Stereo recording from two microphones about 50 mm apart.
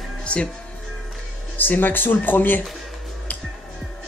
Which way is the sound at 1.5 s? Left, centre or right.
Left.